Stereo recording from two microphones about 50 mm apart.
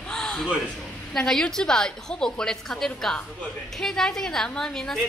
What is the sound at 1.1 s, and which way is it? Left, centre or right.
A woman's voice, centre.